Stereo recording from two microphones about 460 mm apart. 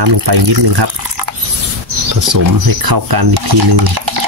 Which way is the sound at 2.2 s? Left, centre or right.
Right.